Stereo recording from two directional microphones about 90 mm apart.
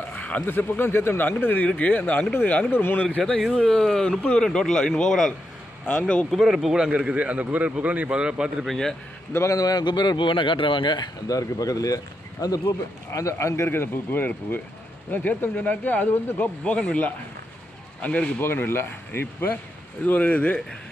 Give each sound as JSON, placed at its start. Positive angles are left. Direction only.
{"t": 0.1, "sound": "a man's voice", "side_deg": 15}
{"t": 6.3, "sound": "speech", "side_deg": -5}
{"t": 8.6, "sound": "a man's voice", "side_deg": 5}
{"t": 9.3, "sound": "speech", "side_deg": 35}
{"t": 11.2, "sound": "a man's voice", "side_deg": 40}